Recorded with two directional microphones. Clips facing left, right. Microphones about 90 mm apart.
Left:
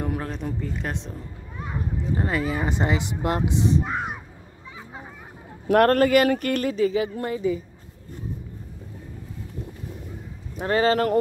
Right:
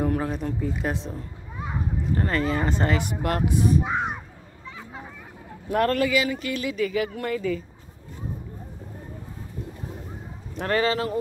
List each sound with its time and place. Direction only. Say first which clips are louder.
0.0 s a sound: right 4 dB; 5° right (ahead or behind)
0.6 s speech: right 3 dB; 5° right (ahead or behind)
1.5 s children playing: right 1 dB; 10° right (ahead or behind)
2.1 s speech: right 1 dB; 10° left (ahead or behind)
3.8 s a sound: right 2 dB; centre (ahead or behind)
4.6 s children playing: right 1 dB; 15° left (ahead or behind)
5.7 s speech: left 5 dB; 55° left (ahead or behind)
6.7 s speech: left 3 dB; 30° left (ahead or behind)
10.6 s speech: left 1 dB; 5° left (ahead or behind)